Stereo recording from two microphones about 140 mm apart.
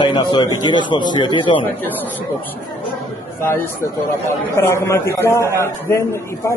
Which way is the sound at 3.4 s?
15° left (ahead or behind).